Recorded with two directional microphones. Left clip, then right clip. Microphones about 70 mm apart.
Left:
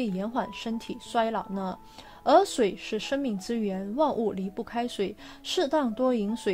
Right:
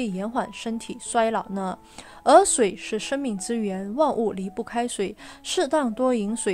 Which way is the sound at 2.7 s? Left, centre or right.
Right.